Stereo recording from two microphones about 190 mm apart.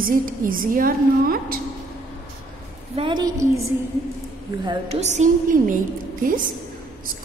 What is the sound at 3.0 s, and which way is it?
Speech, 20° right (ahead or behind).